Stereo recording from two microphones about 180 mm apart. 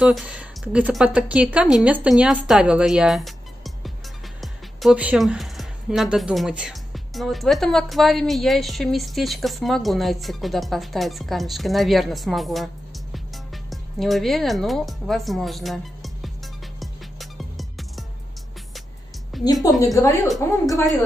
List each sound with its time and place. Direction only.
0.0 s a woman's voice: 5° right (ahead or behind)
13.7 s speech: centre (ahead or behind)
16.8 s music: centre (ahead or behind)
19.3 s music: centre (ahead or behind)
19.8 s a woman's voice: 20° left (ahead or behind)